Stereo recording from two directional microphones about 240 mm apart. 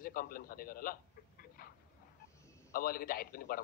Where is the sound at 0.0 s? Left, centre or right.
Left.